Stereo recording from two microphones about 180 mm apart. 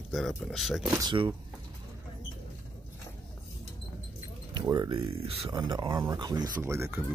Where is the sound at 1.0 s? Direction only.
25° right (ahead or behind).